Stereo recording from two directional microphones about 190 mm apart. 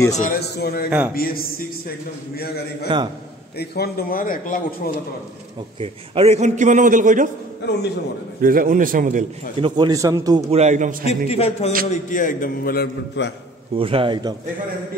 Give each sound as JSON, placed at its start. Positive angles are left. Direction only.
{"t": 0.1, "sound": "a man's voice", "side_deg": 50}
{"t": 0.8, "sound": "a man's voice", "side_deg": -5}
{"t": 1.1, "sound": "a man's voice", "side_deg": 50}
{"t": 5.8, "sound": "a man's voice", "side_deg": -30}
{"t": 8.4, "sound": "a man's voice", "side_deg": -45}
{"t": 9.6, "sound": "speech", "side_deg": -20}
{"t": 10.5, "sound": "a man's voice", "side_deg": -35}
{"t": 11.2, "sound": "a man's voice", "side_deg": 35}
{"t": 11.9, "sound": "a man's voice", "side_deg": 45}
{"t": 13.7, "sound": "speech", "side_deg": -30}